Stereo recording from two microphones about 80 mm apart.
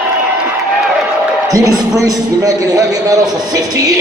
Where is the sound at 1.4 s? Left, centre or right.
Right.